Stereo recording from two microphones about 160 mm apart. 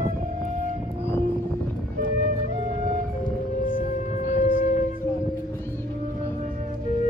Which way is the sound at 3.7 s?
55° left (ahead or behind).